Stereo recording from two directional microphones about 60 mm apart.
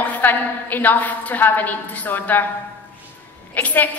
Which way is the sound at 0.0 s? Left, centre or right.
Left.